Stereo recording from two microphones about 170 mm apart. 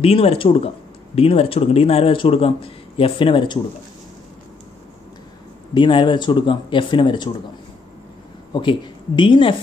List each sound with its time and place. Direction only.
0.0 s speech: 35° left (ahead or behind)
5.8 s speech: 30° left (ahead or behind)
8.5 s speech: 30° left (ahead or behind)